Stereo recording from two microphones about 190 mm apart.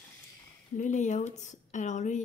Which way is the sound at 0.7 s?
40° left (ahead or behind).